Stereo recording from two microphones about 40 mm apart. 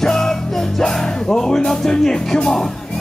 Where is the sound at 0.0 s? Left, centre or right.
Centre.